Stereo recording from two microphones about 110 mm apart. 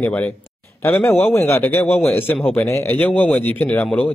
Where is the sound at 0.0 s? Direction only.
15° left (ahead or behind).